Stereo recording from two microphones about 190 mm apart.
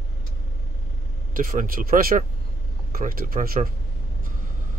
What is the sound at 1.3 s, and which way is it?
Speech, 45° right (ahead or behind).